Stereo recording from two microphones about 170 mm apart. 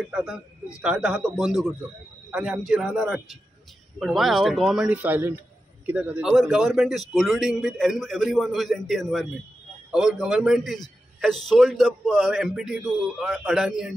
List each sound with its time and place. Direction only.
0.1 s a man's voice: 5° right (ahead or behind)